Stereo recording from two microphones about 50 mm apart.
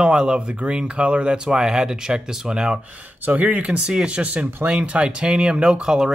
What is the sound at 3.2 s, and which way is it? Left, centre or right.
Speech, right.